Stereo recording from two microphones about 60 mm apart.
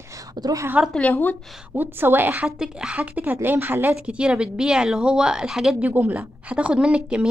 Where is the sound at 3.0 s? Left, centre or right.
Right.